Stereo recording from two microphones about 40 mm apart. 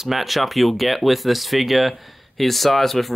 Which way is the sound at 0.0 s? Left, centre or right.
Centre.